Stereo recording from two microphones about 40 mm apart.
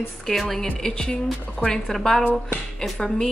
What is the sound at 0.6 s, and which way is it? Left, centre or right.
A woman's voice, left.